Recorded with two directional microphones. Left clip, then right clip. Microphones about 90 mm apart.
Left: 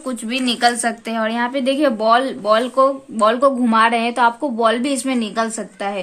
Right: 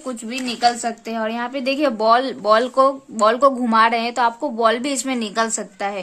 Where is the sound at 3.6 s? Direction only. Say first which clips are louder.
Left 1 dB; 25° right (ahead or behind).